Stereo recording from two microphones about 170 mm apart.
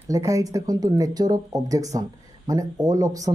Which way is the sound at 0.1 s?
20° right (ahead or behind).